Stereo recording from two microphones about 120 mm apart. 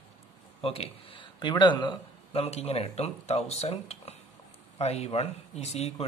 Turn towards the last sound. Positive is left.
turn(degrees=65)  # may be behind; listen again after turning